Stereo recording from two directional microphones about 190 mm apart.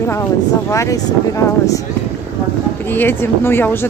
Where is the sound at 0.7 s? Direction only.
15° left (ahead or behind).